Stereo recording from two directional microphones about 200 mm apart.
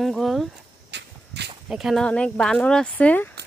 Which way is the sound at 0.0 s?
Centre (ahead or behind).